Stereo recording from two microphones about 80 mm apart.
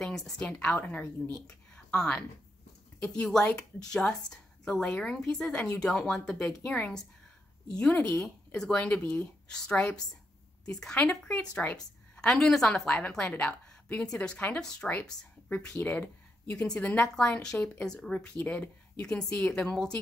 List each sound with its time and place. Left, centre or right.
0.0 s a woman's voice: centre
1.5 s a sound: centre
3.5 s a woman's voice: centre